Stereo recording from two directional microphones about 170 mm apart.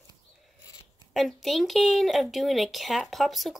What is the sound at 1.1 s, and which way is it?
Speech, centre (ahead or behind).